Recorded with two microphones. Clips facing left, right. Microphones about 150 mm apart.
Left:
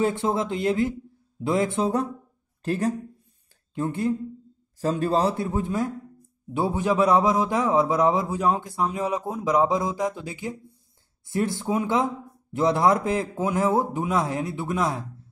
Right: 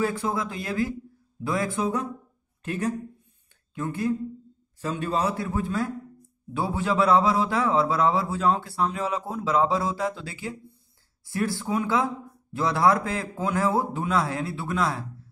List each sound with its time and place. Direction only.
0.0 s a man's voice: 25° left (ahead or behind)
2.6 s a man's voice: 35° left (ahead or behind); by 15.0 s 20° left (ahead or behind)